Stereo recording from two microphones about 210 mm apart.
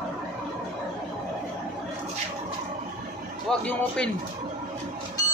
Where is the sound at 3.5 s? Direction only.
Centre (ahead or behind).